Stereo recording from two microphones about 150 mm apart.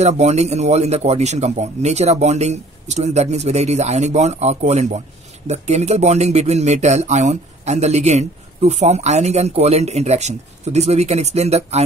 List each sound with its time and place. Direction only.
0.0 s speech: 45° right (ahead or behind)